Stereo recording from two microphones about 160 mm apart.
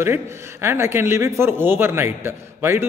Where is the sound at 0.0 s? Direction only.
15° right (ahead or behind).